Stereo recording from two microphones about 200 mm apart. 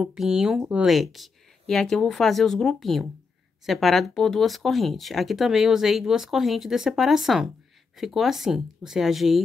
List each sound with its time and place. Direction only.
0.0 s speech: 5° right (ahead or behind)